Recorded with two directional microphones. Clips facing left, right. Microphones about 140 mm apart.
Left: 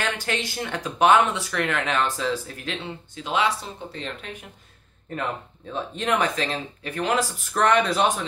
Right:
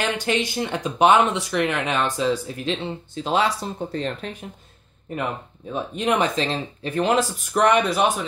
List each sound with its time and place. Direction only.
0.0 s speech: 20° right (ahead or behind)
3.3 s speech: 40° right (ahead or behind)
5.1 s speech: 15° right (ahead or behind)